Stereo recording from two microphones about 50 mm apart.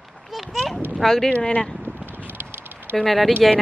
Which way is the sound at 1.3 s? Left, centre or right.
Left.